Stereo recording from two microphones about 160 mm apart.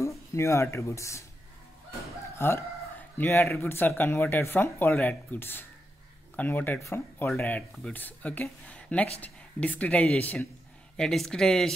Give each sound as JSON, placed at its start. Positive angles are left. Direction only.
{"t": 0.3, "sound": "speech", "side_deg": 20}
{"t": 2.3, "sound": "speech", "side_deg": 15}